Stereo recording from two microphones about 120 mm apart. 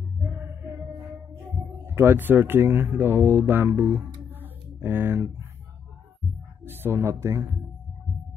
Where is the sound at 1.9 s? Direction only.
20° right (ahead or behind).